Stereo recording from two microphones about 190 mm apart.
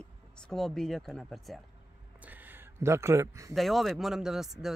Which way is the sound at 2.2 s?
10° right (ahead or behind).